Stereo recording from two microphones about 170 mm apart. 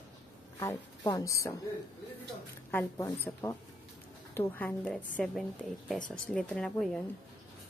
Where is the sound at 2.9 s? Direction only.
15° left (ahead or behind).